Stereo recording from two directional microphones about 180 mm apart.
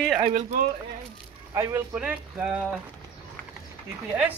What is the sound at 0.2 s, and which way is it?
Speech, 40° right (ahead or behind).